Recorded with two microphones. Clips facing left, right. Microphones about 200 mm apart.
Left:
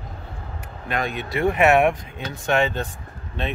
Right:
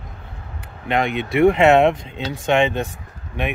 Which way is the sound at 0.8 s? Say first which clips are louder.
Right 6 dB; 20° right (ahead or behind).